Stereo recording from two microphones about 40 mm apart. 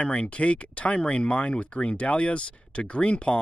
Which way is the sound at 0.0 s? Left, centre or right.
Left.